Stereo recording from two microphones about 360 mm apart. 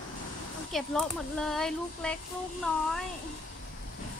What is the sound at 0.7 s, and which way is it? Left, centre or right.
Speech, centre.